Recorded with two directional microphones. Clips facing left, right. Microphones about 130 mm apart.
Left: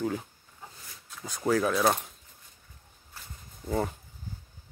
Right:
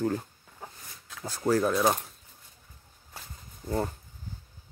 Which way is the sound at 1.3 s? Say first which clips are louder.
Right 1 dB; 10° right (ahead or behind).